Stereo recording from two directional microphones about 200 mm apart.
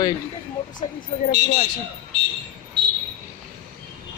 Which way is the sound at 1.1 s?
35° left (ahead or behind).